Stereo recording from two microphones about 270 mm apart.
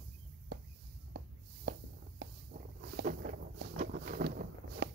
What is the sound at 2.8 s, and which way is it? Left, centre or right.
Boat, right.